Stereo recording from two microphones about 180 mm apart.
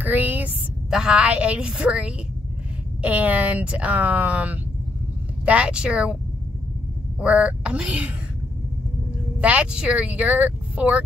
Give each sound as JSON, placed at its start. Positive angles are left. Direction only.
{"t": 0.0, "sound": "a woman's voice", "side_deg": -10}
{"t": 7.2, "sound": "speech", "side_deg": -5}
{"t": 9.4, "sound": "speech", "side_deg": -10}